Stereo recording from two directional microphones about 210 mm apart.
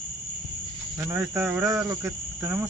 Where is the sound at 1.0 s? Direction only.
10° right (ahead or behind).